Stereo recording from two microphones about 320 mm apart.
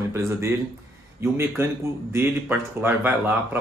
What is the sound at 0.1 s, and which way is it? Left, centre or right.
Speech, centre.